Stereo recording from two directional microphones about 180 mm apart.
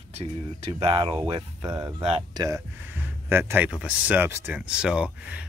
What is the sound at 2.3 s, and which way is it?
Speech, 20° right (ahead or behind).